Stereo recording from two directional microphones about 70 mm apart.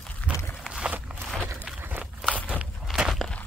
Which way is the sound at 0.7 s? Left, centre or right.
Centre.